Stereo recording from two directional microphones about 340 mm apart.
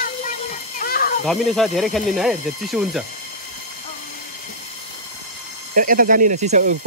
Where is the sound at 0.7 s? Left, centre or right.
Left.